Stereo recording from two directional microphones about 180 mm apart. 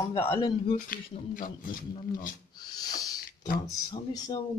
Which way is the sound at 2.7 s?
20° left (ahead or behind).